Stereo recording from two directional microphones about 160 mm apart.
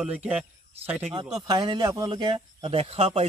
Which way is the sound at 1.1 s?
30° right (ahead or behind).